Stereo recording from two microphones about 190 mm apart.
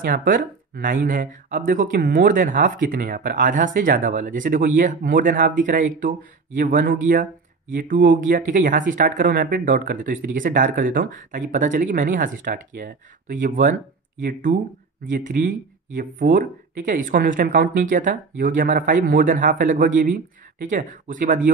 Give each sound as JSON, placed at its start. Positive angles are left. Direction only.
{"t": 0.0, "sound": "speech", "side_deg": -45}